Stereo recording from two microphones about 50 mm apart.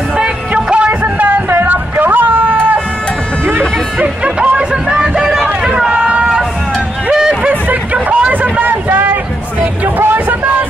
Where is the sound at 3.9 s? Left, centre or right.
Right.